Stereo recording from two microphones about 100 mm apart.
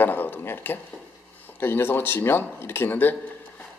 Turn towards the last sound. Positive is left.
turn(degrees=20)  # may be behind; listen again after turning